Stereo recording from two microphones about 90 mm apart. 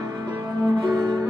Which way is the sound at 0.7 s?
50° right (ahead or behind).